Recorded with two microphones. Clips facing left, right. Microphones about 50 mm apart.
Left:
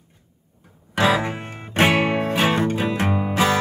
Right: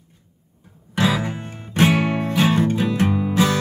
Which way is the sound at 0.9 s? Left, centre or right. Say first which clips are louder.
Left 2 dB; left.